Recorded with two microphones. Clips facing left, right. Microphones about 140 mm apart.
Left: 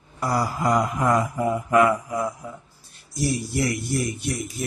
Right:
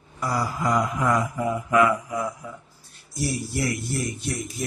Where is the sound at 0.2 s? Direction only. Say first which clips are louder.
Left 2 dB; 40° left (ahead or behind).